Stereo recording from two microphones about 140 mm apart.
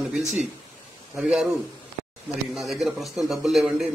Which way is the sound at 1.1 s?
5° right (ahead or behind).